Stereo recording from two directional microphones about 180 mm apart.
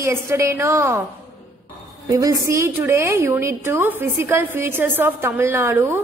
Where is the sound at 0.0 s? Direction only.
15° right (ahead or behind).